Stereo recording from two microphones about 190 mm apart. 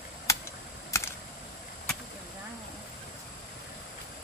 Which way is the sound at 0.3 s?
15° left (ahead or behind).